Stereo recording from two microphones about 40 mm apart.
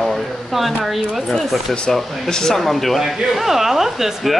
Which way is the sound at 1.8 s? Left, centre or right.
Centre.